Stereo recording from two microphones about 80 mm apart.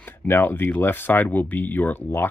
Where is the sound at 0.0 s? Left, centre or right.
Left.